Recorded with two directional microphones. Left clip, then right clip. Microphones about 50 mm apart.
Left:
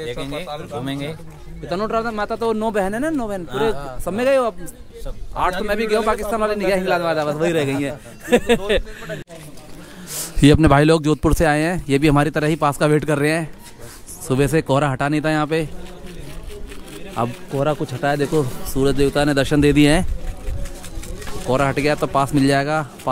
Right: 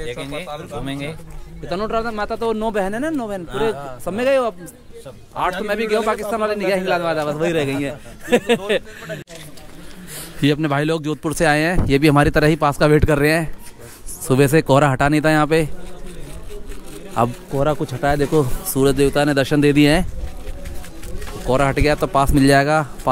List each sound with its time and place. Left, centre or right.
0.2 s a man's voice: left
1.7 s a man's voice: centre
10.1 s a man's voice: left
11.4 s a man's voice: centre
12.0 s speech: centre
12.5 s a man's voice: centre; by 15.7 s right
17.2 s a man's voice: right
19.0 s speech: centre
19.4 s speech: centre
21.5 s speech: right